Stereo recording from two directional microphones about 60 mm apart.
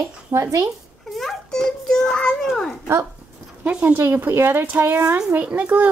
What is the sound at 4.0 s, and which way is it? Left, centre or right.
Speech, right.